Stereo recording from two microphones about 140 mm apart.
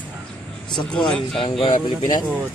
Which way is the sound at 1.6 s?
30° left (ahead or behind).